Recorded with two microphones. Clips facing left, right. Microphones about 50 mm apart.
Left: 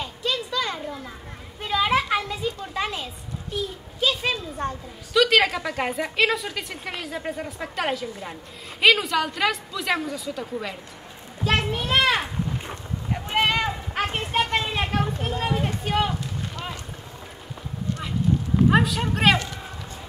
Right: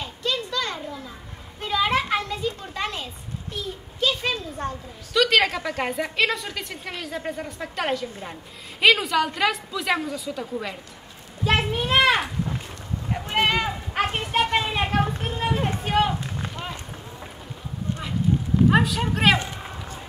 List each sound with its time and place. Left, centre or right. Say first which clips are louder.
0.0 s children playing: even; centre
4.0 s a woman's voice: even; centre
13.1 s a sound: even; centre
14.5 s a child's voice: right 2 dB; centre
15.0 s a child's voice: left 1 dB; centre
15.3 s a child's voice: right 1 dB; centre
15.8 s run: right 2 dB; centre
18.7 s a woman's voice: even; centre
19.3 s speech: right 1 dB; right